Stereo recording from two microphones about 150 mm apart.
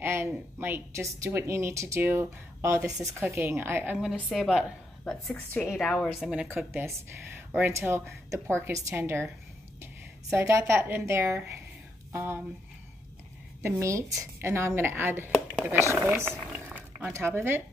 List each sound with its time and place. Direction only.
0.0 s a woman's voice: 15° right (ahead or behind); by 6.3 s 5° left (ahead or behind)
6.5 s a woman's voice: 15° right (ahead or behind)
10.3 s a woman's voice: 20° right (ahead or behind)
12.1 s a sound: 15° right (ahead or behind)
13.6 s a woman's voice: 15° right (ahead or behind)
16.5 s a sound: 15° right (ahead or behind)